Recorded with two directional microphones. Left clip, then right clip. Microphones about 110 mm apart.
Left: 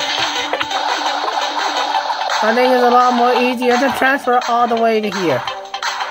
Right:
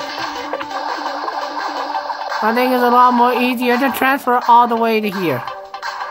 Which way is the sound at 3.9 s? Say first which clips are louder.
Left 1 dB; 90° right.